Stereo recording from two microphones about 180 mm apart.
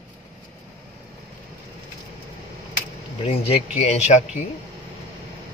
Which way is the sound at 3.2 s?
35° left (ahead or behind).